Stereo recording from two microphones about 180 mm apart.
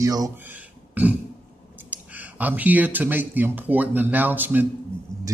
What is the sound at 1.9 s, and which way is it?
Speech, 10° right (ahead or behind).